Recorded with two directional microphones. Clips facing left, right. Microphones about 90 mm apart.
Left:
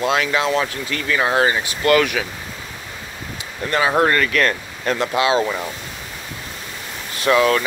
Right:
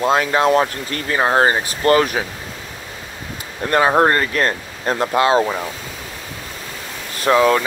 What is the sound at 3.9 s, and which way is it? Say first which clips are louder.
Speech: right 2 dB; 35° right (ahead or behind).